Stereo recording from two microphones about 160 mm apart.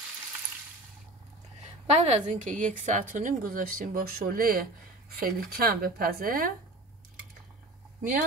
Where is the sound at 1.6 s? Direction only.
45° right (ahead or behind); by 6.5 s 60° right (ahead or behind).